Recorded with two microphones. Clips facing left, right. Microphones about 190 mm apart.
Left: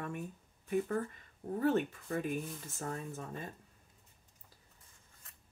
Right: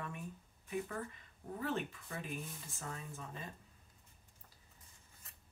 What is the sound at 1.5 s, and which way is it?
Speech, 45° left (ahead or behind).